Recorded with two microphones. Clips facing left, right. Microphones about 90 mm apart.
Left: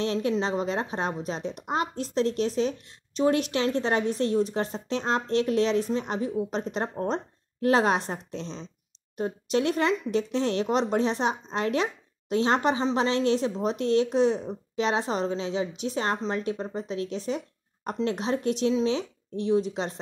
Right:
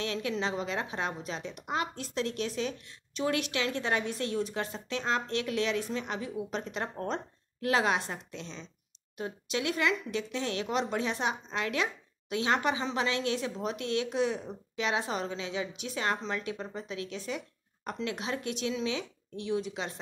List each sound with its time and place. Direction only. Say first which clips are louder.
0.0 s speech: left 6 dB; 30° left (ahead or behind)